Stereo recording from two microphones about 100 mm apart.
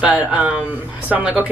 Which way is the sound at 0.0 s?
10° right (ahead or behind).